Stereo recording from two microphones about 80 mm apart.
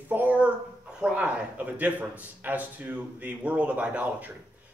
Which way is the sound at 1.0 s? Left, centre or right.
Centre.